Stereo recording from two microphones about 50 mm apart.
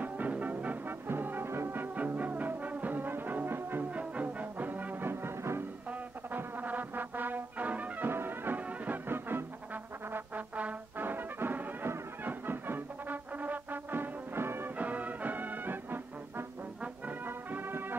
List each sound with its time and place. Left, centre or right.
0.0 s music: right
0.8 s music: right
3.9 s brass instrument: right
5.0 s music: right
6.3 s brass instrument: right
8.1 s music: right
8.6 s music: right
9.0 s music: right
10.1 s trombone: right
11.0 s brass instrument: right
12.3 s music: right
14.8 s music: right